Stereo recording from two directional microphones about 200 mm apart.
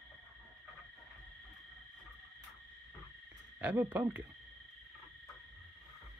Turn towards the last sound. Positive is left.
turn(degrees=-10)  # may be behind; listen again after turning